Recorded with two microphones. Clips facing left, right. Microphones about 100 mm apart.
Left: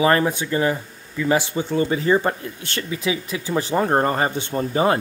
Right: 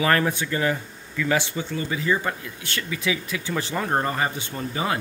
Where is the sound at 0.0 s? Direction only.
20° left (ahead or behind).